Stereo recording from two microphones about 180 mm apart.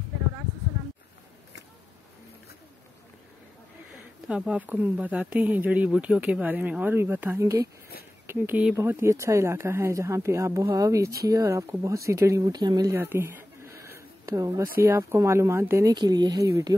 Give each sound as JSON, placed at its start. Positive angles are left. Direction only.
{"t": 4.3, "sound": "speech", "side_deg": -5}